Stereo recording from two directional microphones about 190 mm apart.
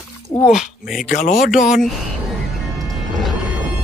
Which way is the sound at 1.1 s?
45° left (ahead or behind).